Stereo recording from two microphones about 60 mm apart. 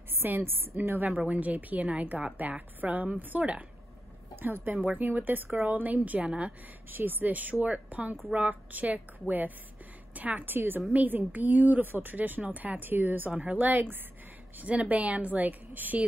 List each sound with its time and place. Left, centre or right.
0.1 s a woman's voice: right
1.1 s a woman's voice: right
6.9 s a woman's voice: right
10.1 s a woman's voice: right